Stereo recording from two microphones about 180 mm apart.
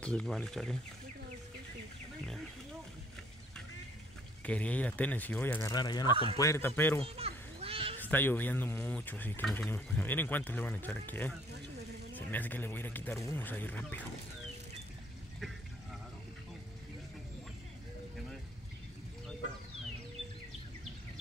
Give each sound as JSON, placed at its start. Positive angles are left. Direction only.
{"t": 0.0, "sound": "speech", "side_deg": 5}
{"t": 2.2, "sound": "wild animals", "side_deg": 0}
{"t": 4.5, "sound": "speech", "side_deg": 10}
{"t": 7.2, "sound": "children playing", "side_deg": -35}
{"t": 8.0, "sound": "speech", "side_deg": 10}